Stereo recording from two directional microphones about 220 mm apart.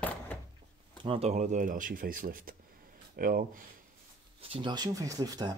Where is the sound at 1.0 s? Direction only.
30° right (ahead or behind).